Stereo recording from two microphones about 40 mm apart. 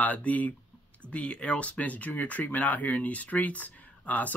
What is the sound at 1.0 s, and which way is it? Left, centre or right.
Speech, left.